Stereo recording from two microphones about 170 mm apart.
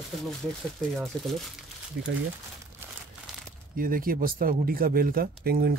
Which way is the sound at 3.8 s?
55° right (ahead or behind).